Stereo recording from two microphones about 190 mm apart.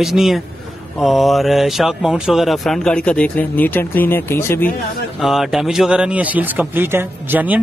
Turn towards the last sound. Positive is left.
turn(degrees=-10)  # may be behind; listen again after turning